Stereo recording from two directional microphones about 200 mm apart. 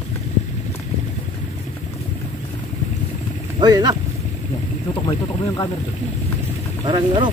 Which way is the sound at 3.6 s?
20° right (ahead or behind).